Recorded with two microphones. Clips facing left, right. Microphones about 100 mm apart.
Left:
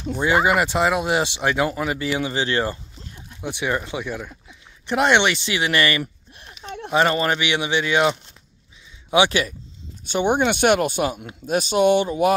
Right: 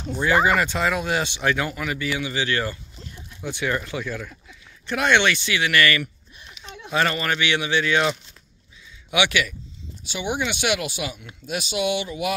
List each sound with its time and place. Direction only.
0.1 s speech: 20° left (ahead or behind)
6.6 s a sound: 40° left (ahead or behind)
6.9 s speech: 20° left (ahead or behind)
9.1 s speech: 35° left (ahead or behind)
10.0 s speech: 50° left (ahead or behind)